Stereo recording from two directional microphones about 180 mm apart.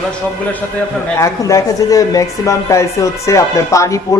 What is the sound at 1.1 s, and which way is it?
Speech, 20° left (ahead or behind).